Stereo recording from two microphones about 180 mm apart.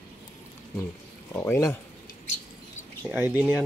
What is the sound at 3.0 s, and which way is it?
Speech, 10° right (ahead or behind).